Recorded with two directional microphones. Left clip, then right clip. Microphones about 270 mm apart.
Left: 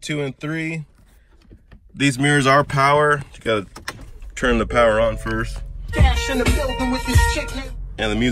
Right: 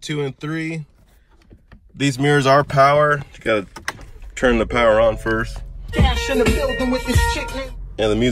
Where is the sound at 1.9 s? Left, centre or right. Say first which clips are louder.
Even; centre.